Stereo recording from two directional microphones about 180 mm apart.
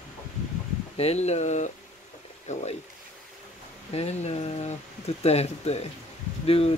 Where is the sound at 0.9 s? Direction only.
35° left (ahead or behind).